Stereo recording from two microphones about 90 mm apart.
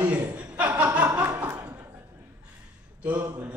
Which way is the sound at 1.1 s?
35° right (ahead or behind).